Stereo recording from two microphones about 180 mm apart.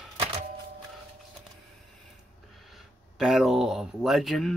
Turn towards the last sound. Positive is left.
turn(degrees=0)  # may be behind; listen again after turning